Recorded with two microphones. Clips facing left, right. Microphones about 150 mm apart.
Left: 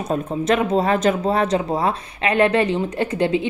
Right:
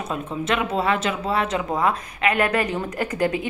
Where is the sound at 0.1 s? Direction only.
40° left (ahead or behind).